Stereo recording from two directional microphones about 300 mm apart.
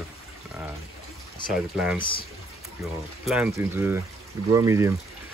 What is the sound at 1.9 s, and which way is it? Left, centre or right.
Speech, centre.